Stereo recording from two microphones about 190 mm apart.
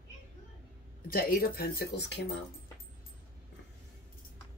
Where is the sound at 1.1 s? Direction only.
50° left (ahead or behind).